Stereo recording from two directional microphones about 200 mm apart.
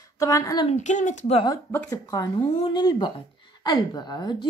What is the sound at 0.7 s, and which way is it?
Speech, 35° left (ahead or behind).